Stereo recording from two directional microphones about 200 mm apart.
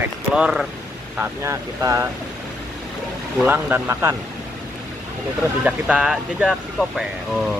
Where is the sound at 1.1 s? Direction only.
15° right (ahead or behind).